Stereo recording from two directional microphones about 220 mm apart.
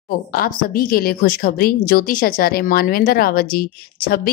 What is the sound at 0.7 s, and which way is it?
A woman's voice, 40° left (ahead or behind).